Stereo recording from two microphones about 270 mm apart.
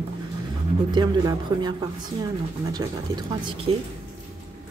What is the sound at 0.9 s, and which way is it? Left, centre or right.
Speech, centre.